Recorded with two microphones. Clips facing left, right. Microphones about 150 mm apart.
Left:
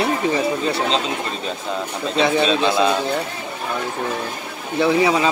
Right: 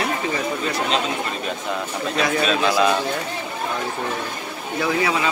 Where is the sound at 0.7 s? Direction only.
30° left (ahead or behind).